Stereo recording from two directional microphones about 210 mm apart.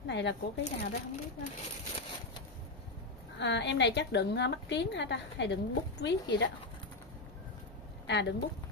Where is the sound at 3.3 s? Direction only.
55° left (ahead or behind).